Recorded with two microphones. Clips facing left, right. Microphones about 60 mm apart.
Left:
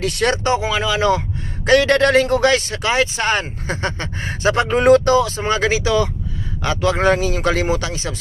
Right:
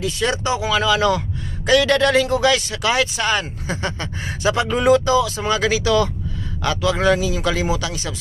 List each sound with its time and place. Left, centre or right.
0.0 s speech: left
0.6 s speech: left
1.7 s speech: left